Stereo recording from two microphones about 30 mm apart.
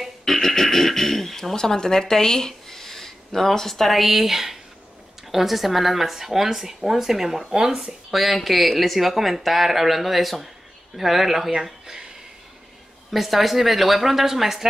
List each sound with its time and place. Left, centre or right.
0.2 s a sound: centre
5.3 s speech: centre
8.1 s speech: centre
13.1 s speech: centre